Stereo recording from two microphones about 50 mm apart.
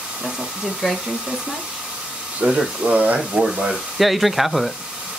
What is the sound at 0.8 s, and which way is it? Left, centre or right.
Speech, centre.